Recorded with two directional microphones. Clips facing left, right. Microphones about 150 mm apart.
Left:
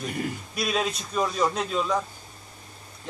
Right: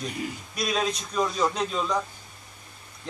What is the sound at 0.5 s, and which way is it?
A man's voice, 5° left (ahead or behind).